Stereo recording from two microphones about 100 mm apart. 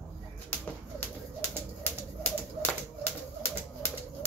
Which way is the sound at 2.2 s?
20° left (ahead or behind).